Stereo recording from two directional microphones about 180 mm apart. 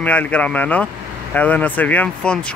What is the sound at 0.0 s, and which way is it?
Speech, 10° left (ahead or behind).